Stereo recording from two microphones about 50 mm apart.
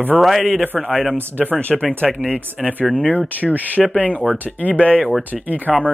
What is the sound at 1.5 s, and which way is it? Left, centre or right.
Speech, left.